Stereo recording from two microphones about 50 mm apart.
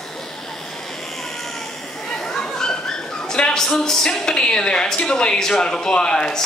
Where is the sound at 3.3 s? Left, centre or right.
Centre.